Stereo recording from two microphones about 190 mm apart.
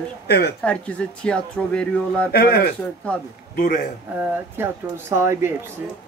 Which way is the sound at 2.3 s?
55° left (ahead or behind).